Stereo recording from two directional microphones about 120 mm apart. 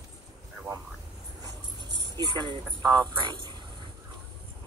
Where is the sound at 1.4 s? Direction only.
35° right (ahead or behind).